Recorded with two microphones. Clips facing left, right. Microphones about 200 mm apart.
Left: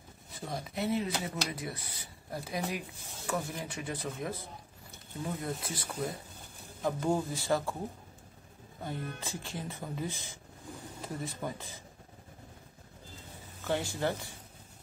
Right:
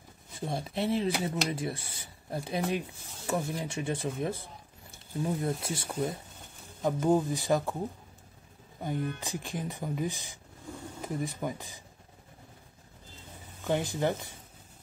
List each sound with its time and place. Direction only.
0.5 s speech: 30° right (ahead or behind)
8.8 s speech: 15° right (ahead or behind)
13.7 s speech: 20° right (ahead or behind)